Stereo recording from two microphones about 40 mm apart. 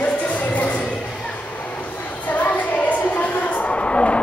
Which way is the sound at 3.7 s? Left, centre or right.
Left.